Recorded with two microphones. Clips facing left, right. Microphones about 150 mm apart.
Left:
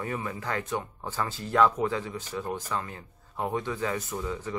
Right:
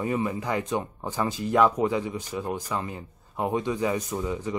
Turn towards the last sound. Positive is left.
turn(degrees=-15)  # may be behind; listen again after turning